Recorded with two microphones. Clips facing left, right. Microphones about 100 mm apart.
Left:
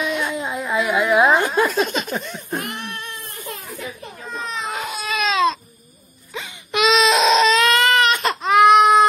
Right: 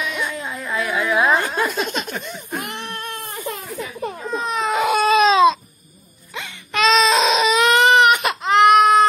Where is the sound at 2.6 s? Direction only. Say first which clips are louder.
Even; 25° right (ahead or behind).